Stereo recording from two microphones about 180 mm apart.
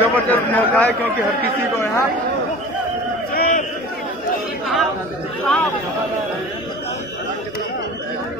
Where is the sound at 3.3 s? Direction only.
45° left (ahead or behind).